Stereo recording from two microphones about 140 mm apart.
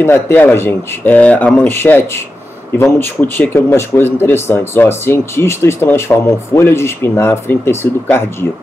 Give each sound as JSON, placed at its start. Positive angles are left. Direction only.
{"t": 0.0, "sound": "speech", "side_deg": 15}